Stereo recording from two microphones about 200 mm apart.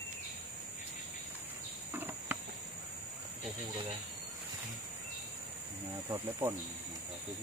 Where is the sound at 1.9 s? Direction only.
10° right (ahead or behind).